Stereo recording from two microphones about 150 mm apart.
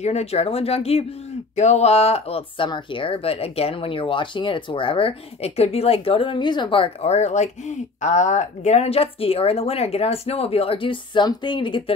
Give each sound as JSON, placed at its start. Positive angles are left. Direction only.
{"t": 0.0, "sound": "speech", "side_deg": 45}